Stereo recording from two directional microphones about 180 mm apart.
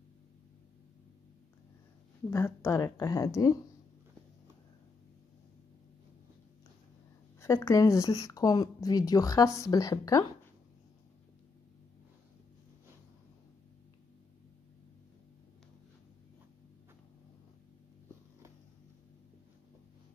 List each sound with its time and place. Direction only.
2.3 s speech: 15° left (ahead or behind)
7.3 s a woman's voice: 15° left (ahead or behind)